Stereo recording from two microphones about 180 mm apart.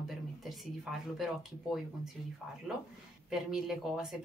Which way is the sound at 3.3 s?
5° right (ahead or behind).